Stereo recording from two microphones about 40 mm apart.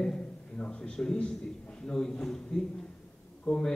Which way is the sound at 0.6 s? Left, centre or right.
Left.